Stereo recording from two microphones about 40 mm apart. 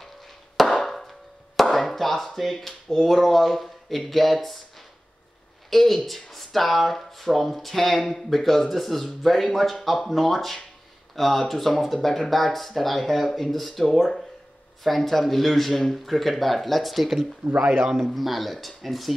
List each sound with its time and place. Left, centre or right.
0.6 s chop: centre
5.7 s speech: centre
17.4 s speech: centre
18.0 s speech: centre